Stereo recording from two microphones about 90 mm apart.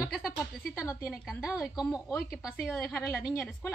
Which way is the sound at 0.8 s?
35° left (ahead or behind).